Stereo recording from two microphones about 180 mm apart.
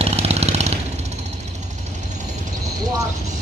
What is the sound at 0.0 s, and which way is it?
Jackhammer, 35° right (ahead or behind).